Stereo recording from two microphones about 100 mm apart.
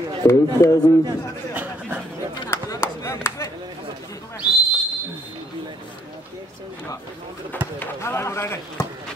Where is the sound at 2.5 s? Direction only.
30° left (ahead or behind).